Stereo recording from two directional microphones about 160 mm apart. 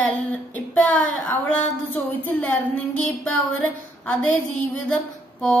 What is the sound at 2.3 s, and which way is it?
Female singing, 5° left (ahead or behind).